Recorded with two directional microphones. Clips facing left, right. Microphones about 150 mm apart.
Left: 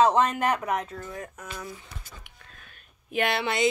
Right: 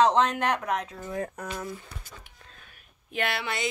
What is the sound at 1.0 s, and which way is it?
Speech, 30° right (ahead or behind).